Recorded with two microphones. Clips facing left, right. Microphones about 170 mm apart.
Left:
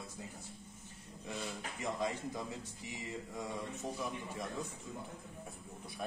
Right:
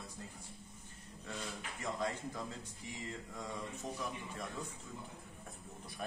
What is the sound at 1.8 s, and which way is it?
Speech, 15° left (ahead or behind).